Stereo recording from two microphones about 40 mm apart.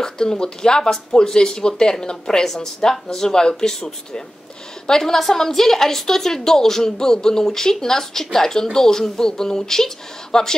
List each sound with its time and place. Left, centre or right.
0.0 s speech: centre